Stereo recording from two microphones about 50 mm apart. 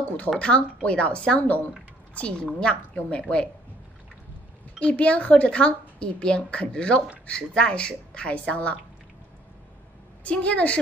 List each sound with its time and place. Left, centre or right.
0.4 s a woman's voice: left
4.7 s speech: left
10.2 s speech: left